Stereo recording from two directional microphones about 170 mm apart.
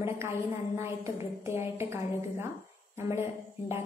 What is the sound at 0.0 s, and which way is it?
A woman's voice, 15° right (ahead or behind).